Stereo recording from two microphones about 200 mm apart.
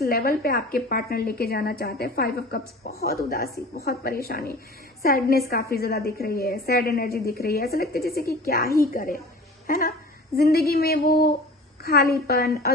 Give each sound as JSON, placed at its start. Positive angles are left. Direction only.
{"t": 0.0, "sound": "a woman's voice", "side_deg": 50}